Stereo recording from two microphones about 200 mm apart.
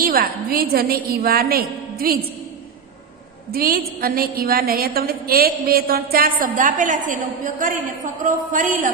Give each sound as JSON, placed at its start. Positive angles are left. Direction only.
{"t": 0.0, "sound": "a woman's voice", "side_deg": -50}
{"t": 3.5, "sound": "a woman's voice", "side_deg": -50}